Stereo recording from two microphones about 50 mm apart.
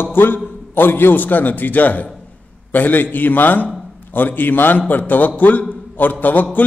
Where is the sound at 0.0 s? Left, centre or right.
Left.